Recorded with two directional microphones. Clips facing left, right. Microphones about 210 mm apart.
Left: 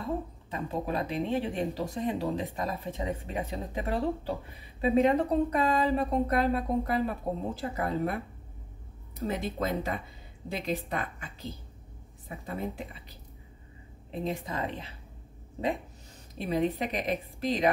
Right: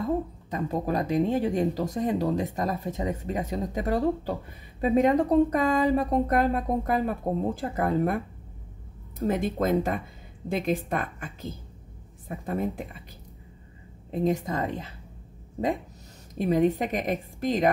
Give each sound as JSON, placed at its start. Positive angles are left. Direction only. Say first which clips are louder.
{"t": 0.5, "sound": "speech", "louder": "right 4 dB", "side_deg": -45}
{"t": 9.3, "sound": "speech", "louder": "right 7 dB", "side_deg": -50}
{"t": 14.1, "sound": "speech", "louder": "right 7 dB", "side_deg": -45}
{"t": 16.3, "sound": "speech", "louder": "right 6 dB", "side_deg": -45}